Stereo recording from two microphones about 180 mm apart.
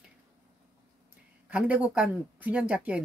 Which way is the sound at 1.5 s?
10° right (ahead or behind).